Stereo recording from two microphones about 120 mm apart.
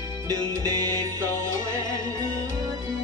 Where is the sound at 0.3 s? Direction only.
30° right (ahead or behind).